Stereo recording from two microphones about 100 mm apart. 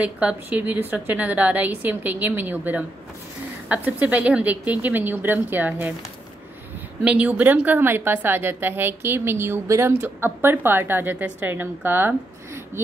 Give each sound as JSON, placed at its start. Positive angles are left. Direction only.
{"t": 0.0, "sound": "a woman's voice", "side_deg": -15}
{"t": 7.1, "sound": "a woman's voice", "side_deg": -15}